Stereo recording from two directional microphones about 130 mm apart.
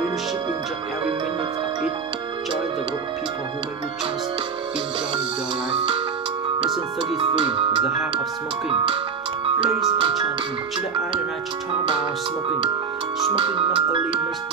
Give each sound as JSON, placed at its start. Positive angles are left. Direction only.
{"t": 5.8, "sound": "music", "side_deg": -45}
{"t": 7.2, "sound": "music", "side_deg": -45}
{"t": 11.8, "sound": "music", "side_deg": -40}
{"t": 13.3, "sound": "music", "side_deg": -45}